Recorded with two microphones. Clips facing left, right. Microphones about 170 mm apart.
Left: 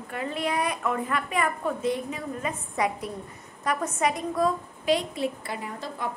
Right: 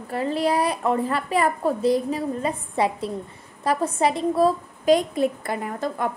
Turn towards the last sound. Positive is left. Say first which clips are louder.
# right 7 dB
turn(degrees=-50)  # may be behind; listen again after turning